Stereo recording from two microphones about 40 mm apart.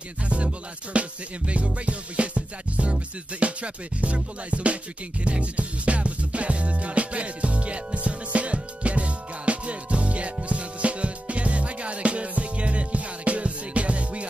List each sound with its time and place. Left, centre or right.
0.9 s music: right